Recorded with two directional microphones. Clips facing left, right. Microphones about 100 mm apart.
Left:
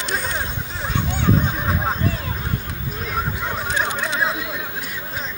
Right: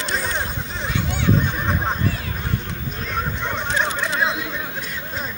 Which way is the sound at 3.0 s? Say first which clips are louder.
Even; 5° left (ahead or behind).